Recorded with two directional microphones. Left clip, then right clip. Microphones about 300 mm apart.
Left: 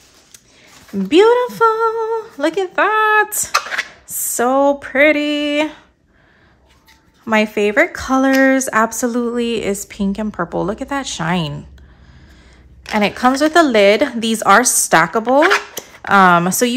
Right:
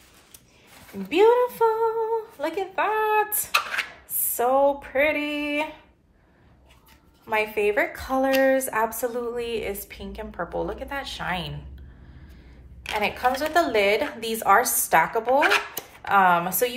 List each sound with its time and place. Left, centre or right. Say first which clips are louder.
1.0 s speech: left 7 dB; left
7.2 s speech: left 8 dB; left
13.0 s speech: left 9 dB; left